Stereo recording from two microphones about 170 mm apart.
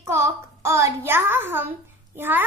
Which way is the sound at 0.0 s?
15° right (ahead or behind).